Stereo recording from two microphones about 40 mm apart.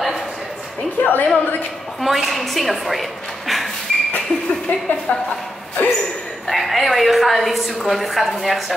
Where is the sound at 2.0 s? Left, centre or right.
Centre.